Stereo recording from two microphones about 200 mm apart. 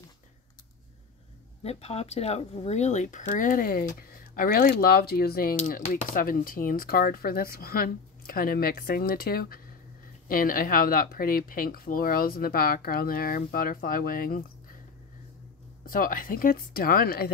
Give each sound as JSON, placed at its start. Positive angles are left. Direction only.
{"t": 1.6, "sound": "speech", "side_deg": 30}
{"t": 15.8, "sound": "speech", "side_deg": 45}